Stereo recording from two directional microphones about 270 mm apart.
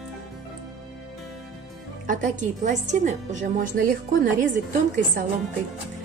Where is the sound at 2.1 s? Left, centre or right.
Right.